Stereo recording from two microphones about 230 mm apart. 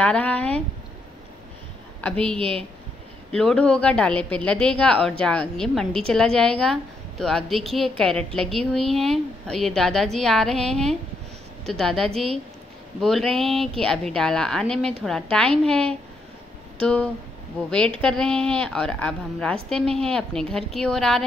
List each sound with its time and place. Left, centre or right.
0.0 s a woman's voice: centre
2.0 s a woman's voice: centre
2.3 s a woman's voice: right
3.3 s a woman's voice: centre